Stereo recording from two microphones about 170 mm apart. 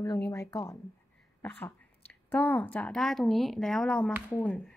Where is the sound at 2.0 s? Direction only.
10° left (ahead or behind).